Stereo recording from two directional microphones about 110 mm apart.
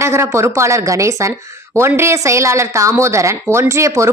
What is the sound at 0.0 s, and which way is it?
Speech, 25° right (ahead or behind).